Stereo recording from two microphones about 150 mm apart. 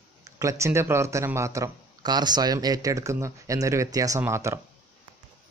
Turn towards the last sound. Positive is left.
turn(degrees=-20)  # may be behind; listen again after turning